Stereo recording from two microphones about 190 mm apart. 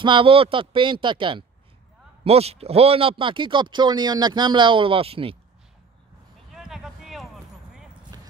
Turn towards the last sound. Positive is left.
turn(degrees=0)  # may be behind; listen again after turning